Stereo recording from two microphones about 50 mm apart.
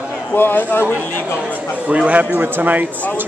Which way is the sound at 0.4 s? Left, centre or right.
Left.